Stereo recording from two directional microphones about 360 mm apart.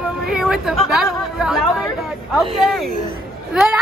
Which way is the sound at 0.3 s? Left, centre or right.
Centre.